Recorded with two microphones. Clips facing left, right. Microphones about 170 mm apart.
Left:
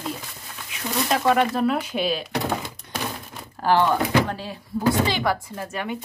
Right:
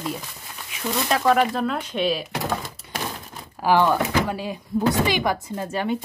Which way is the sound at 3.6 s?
10° right (ahead or behind).